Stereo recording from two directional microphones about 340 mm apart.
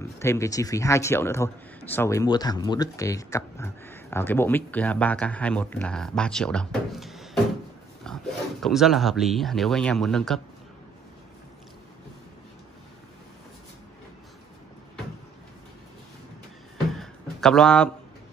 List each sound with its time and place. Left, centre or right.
0.2 s a man's voice: centre
16.9 s music: centre